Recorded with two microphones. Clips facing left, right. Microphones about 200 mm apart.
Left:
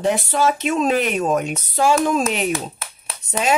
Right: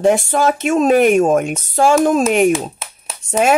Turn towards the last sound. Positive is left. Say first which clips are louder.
# right 6 dB
turn(degrees=-55)  # may be behind; listen again after turning